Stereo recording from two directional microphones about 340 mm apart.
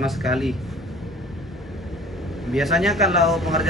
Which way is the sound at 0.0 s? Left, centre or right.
Centre.